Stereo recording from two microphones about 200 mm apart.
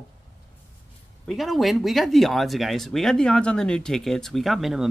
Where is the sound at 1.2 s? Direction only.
Centre (ahead or behind).